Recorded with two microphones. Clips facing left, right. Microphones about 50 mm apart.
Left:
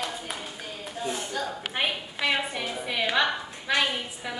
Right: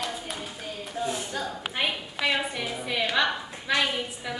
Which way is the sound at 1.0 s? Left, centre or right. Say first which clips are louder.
Even; centre.